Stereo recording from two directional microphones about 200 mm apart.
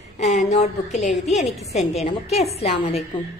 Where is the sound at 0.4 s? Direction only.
35° left (ahead or behind).